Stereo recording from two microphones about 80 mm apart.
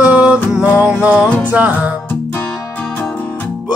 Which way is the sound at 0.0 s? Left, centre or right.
Centre.